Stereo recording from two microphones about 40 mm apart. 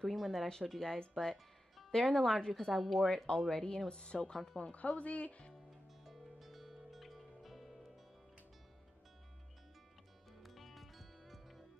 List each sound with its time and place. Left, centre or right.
0.0 s speech: centre
1.1 s music: centre
1.9 s speech: centre
2.5 s speech: centre
3.3 s speech: centre
4.0 s a woman's voice: left
4.7 s a woman's voice: left
6.0 s music: centre
10.4 s music: centre